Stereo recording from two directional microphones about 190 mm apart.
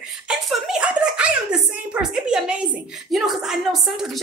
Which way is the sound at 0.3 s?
5° right (ahead or behind).